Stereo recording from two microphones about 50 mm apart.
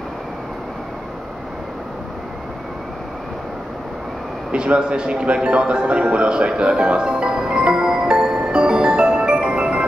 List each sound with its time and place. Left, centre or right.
4.5 s music: right